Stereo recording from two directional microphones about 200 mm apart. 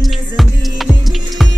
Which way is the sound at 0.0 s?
Centre (ahead or behind).